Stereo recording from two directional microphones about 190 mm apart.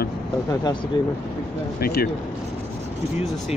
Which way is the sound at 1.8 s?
55° left (ahead or behind).